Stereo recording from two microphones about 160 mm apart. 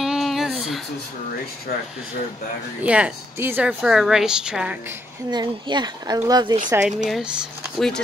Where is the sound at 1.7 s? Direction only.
75° left (ahead or behind).